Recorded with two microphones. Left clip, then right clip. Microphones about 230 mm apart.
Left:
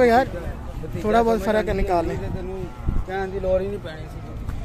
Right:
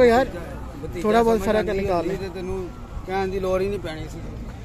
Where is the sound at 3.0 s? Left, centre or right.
Right.